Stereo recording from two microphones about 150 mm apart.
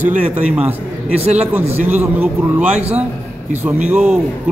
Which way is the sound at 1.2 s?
45° right (ahead or behind).